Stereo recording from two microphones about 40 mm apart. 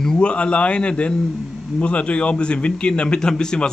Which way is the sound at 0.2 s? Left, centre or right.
Left.